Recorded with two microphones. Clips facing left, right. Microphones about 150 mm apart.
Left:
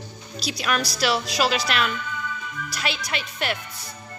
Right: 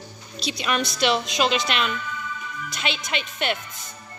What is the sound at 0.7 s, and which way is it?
Speech, 25° right (ahead or behind).